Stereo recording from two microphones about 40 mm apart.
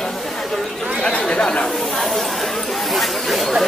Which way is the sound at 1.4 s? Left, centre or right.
Left.